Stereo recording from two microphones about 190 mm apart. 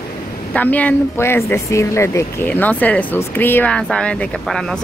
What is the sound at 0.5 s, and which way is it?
Speech, 10° left (ahead or behind).